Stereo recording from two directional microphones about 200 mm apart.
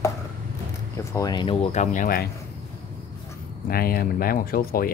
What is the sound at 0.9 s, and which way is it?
Speech, 15° left (ahead or behind).